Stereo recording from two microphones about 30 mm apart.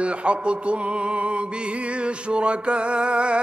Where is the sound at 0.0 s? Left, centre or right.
Right.